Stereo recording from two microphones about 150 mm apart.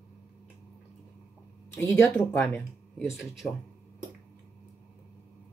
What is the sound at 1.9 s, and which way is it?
Speech, 5° left (ahead or behind).